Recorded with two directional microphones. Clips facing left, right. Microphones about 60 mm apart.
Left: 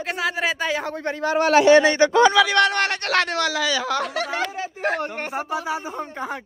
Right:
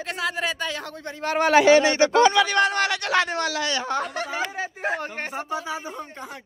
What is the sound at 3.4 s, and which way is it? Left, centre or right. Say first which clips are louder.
Speech: left 3 dB; left.